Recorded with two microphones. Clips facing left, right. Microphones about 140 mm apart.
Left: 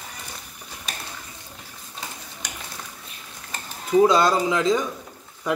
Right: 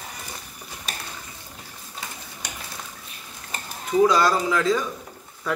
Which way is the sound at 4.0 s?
25° left (ahead or behind).